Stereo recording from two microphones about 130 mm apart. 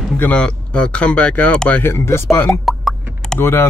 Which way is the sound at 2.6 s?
Centre (ahead or behind).